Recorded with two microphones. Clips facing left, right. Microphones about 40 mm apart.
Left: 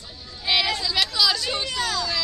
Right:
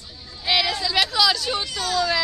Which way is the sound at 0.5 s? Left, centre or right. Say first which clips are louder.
Right 1 dB; centre.